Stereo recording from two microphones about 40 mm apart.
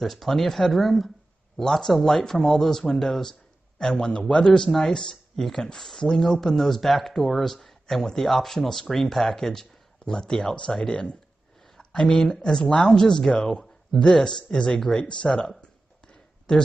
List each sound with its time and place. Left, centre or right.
0.0 s speech: centre
4.6 s speech: centre
15.0 s speech: left